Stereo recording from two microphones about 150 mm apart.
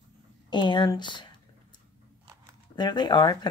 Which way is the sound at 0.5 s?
30° left (ahead or behind).